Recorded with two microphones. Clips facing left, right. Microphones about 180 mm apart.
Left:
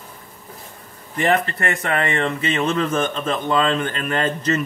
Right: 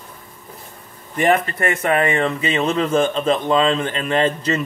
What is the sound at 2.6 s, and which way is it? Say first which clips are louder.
A man's voice: right 4 dB; 30° right (ahead or behind).